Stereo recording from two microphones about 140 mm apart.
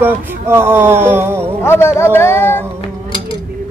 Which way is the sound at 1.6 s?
15° left (ahead or behind).